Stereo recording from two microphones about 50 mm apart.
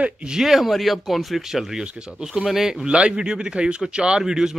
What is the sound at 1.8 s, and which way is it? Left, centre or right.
Speech, centre.